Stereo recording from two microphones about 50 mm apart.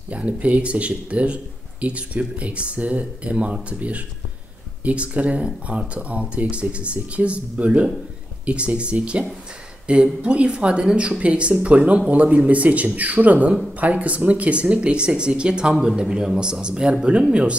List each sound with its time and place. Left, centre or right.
0.1 s speech: right